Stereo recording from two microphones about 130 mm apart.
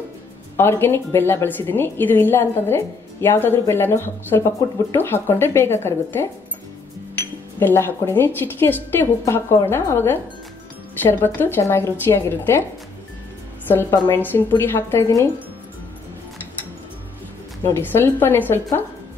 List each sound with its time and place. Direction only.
0.6 s a woman's voice: 20° left (ahead or behind)
7.5 s a woman's voice: 20° left (ahead or behind)
13.7 s a woman's voice: 20° left (ahead or behind)
17.6 s a woman's voice: 20° left (ahead or behind)